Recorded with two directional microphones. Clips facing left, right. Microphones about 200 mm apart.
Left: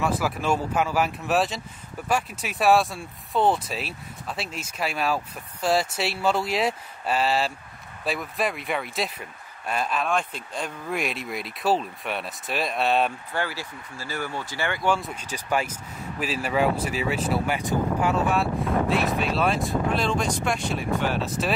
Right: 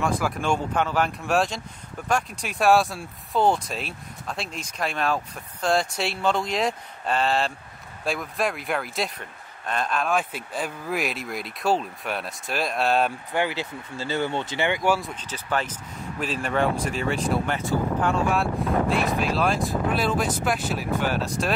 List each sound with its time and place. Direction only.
0.0 s speech: 5° left (ahead or behind)
13.3 s speech: 20° right (ahead or behind)
15.0 s speech: 5° left (ahead or behind)
17.6 s speech: 15° left (ahead or behind)
18.1 s speech: centre (ahead or behind)